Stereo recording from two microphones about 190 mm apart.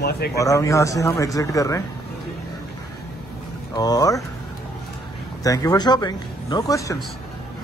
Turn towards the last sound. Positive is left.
turn(degrees=15)  # may be behind; listen again after turning